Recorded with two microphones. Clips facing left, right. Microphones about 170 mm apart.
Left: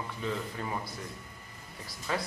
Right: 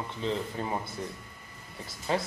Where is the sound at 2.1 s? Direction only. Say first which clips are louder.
Right 4 dB; 25° right (ahead or behind).